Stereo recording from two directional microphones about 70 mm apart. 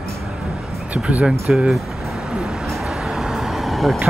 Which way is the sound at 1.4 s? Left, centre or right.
Centre.